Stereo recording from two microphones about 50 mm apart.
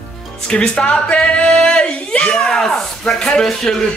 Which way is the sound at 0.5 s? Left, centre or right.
Left.